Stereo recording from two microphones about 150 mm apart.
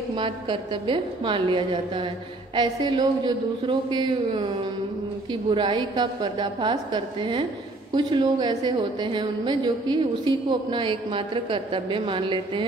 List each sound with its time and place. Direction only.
0.1 s a woman's voice: 35° right (ahead or behind)